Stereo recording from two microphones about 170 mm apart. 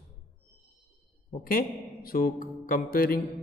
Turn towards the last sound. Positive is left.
turn(degrees=60)  # may be behind; listen again after turning